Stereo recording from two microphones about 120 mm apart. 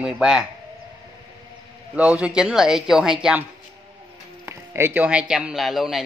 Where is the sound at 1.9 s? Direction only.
10° right (ahead or behind).